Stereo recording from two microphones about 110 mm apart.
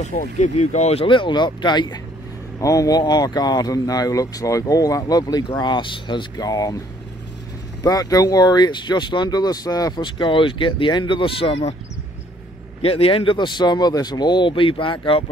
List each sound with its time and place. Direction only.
0.0 s speech: 90° left
1.0 s speech: 50° left (ahead or behind)
2.6 s speech: 30° left (ahead or behind)
7.8 s speech: 35° left (ahead or behind); by 11.7 s 55° left (ahead or behind)
12.8 s speech: 60° left (ahead or behind)